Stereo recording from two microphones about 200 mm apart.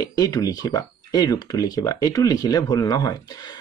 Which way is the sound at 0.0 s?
20° left (ahead or behind).